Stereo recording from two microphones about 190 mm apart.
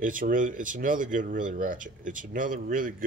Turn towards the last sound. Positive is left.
turn(degrees=-45)  # may be behind; listen again after turning